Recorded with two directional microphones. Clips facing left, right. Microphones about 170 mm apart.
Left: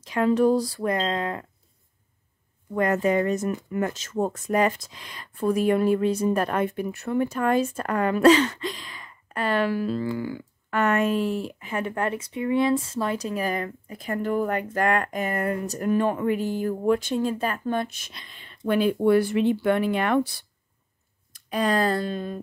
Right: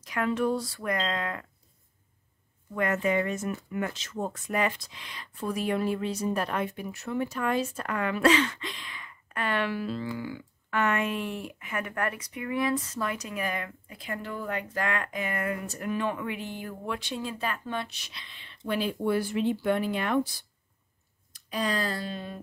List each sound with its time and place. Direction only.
0.0 s speech: 30° left (ahead or behind)
2.7 s speech: 35° left (ahead or behind); by 20.4 s 65° left (ahead or behind)
21.3 s speech: 55° left (ahead or behind)